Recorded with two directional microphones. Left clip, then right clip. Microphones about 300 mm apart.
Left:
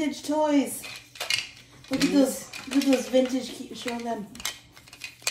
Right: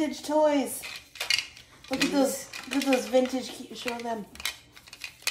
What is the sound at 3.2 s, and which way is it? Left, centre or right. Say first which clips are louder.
Speech: left 2 dB; centre.